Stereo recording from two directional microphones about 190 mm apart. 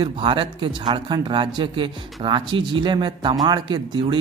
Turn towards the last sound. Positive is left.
turn(degrees=-25)  # may be behind; listen again after turning